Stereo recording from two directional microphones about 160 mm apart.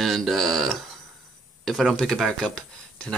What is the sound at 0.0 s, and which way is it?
Speech, centre (ahead or behind).